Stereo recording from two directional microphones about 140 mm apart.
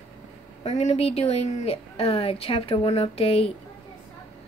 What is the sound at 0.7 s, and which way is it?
Speech, 50° left (ahead or behind).